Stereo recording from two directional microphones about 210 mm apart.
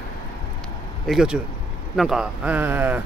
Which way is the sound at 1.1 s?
Centre (ahead or behind).